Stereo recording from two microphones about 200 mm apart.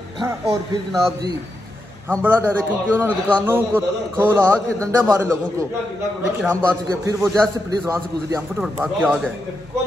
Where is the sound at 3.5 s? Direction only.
10° right (ahead or behind).